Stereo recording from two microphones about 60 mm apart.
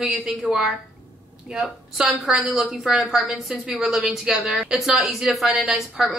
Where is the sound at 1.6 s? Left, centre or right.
Centre.